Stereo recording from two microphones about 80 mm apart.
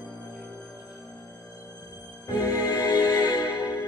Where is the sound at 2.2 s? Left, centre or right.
Left.